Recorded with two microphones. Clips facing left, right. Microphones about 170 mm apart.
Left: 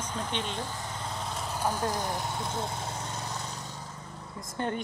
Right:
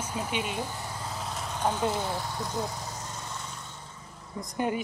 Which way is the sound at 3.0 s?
35° left (ahead or behind).